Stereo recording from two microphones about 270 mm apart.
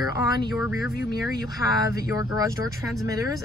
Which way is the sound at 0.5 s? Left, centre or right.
Centre.